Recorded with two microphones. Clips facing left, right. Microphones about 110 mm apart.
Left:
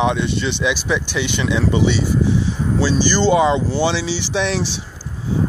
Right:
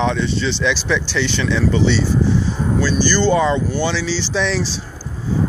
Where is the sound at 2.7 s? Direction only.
25° left (ahead or behind).